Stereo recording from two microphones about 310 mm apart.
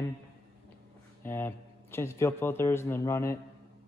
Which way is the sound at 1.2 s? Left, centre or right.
Centre.